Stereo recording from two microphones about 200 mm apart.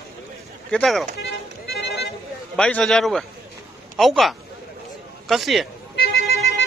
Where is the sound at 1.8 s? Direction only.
55° left (ahead or behind).